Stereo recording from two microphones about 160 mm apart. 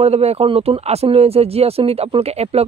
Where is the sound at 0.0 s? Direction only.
40° right (ahead or behind).